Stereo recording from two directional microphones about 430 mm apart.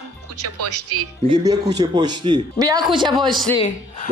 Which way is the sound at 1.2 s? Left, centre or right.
Centre.